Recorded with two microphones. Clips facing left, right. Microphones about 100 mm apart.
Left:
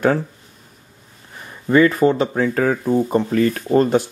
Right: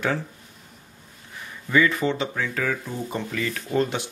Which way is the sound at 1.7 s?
45° left (ahead or behind).